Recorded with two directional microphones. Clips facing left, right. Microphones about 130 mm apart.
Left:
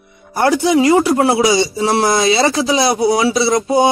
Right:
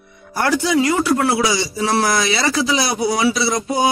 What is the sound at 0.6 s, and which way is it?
Speech, 25° left (ahead or behind).